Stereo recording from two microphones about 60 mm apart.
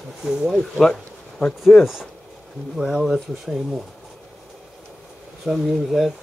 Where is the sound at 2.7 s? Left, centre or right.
Centre.